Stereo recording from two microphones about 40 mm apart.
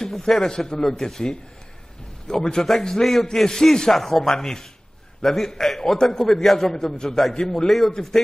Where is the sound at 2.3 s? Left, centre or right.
Centre.